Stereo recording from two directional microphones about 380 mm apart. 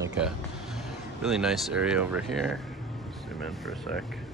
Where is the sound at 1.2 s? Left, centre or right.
Centre.